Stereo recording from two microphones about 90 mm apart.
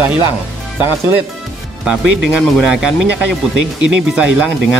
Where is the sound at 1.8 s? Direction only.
10° right (ahead or behind).